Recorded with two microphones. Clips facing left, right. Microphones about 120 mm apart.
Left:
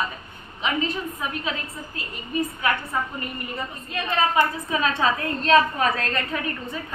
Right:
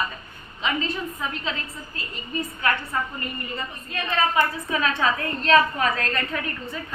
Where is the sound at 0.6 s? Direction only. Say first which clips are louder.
Left 1 dB; 15° left (ahead or behind).